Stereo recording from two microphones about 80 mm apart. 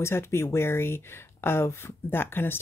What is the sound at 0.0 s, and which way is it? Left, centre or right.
Speech, left.